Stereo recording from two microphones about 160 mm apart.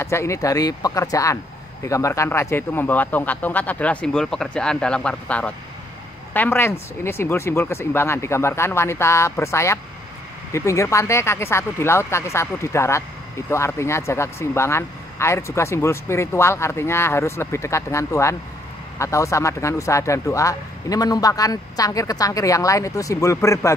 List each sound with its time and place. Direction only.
0.0 s speech: 15° left (ahead or behind)